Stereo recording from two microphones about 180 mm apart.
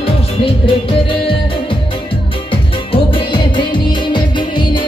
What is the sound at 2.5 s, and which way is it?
Music, 30° left (ahead or behind).